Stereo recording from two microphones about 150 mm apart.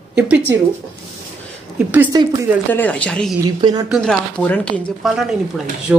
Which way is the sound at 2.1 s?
30° right (ahead or behind).